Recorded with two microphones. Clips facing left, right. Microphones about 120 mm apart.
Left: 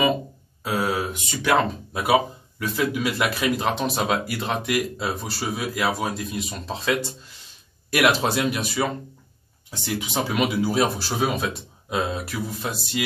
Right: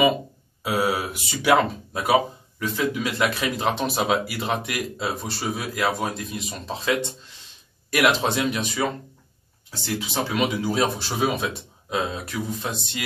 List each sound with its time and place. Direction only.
0.7 s mantra: 10° right (ahead or behind)
2.0 s speech: 5° left (ahead or behind)